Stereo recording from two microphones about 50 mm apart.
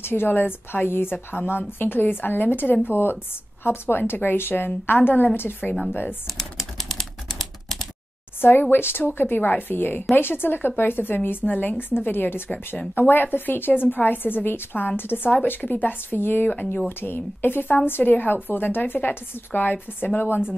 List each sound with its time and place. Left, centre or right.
0.0 s a woman's voice: left
6.3 s typing: centre
8.4 s a woman's voice: left
17.0 s a woman's voice: left